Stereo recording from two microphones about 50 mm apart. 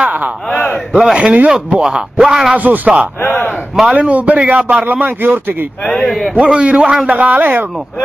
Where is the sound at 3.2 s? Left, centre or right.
Left.